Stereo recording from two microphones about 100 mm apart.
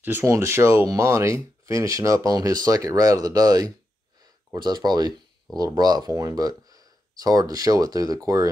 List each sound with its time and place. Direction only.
0.0 s speech: 25° right (ahead or behind)